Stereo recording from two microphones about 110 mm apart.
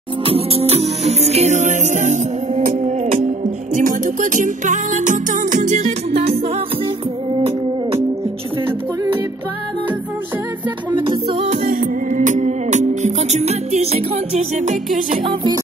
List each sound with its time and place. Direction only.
0.2 s music: 60° right (ahead or behind); by 3.3 s 90° right
5.6 s music: 90° right
10.9 s music: 45° right (ahead or behind)
12.4 s music: 90° right
15.2 s music: 45° right (ahead or behind)